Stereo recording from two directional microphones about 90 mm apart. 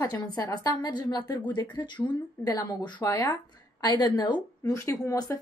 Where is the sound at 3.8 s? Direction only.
60° left (ahead or behind).